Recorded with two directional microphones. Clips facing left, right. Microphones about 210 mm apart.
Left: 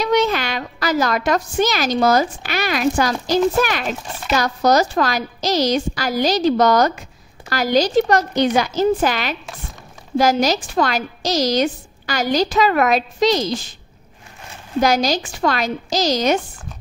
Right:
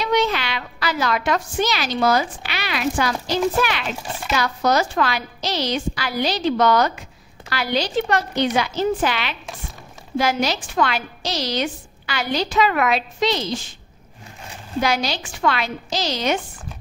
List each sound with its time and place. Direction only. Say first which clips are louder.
0.0 s a woman's voice: left 3 dB; 45° left (ahead or behind)
14.8 s a woman's voice: left 5 dB; 40° left (ahead or behind)